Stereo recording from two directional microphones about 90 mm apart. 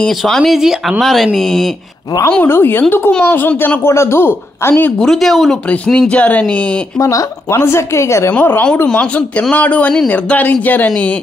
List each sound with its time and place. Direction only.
0.2 s speech: centre (ahead or behind)
2.2 s a woman's voice: 25° left (ahead or behind)
4.9 s speech: 5° left (ahead or behind)
7.0 s a woman's voice: 35° left (ahead or behind)
8.3 s a woman's voice: 20° left (ahead or behind)